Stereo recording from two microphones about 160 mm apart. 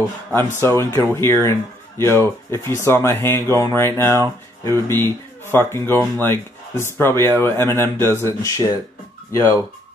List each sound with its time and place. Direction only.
0.3 s speech: 15° left (ahead or behind)